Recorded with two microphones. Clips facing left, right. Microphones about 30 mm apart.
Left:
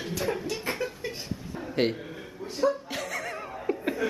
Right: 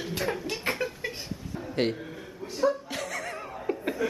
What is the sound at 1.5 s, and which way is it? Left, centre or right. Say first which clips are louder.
Chuckle: left 1 dB; centre.